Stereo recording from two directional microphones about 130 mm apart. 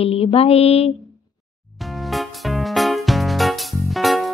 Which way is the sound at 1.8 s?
Centre (ahead or behind).